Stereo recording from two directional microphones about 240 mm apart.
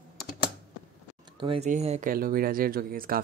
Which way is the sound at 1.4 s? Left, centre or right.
Right.